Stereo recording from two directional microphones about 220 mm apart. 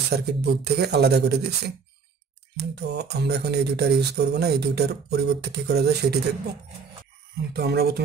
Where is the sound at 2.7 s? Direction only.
50° right (ahead or behind).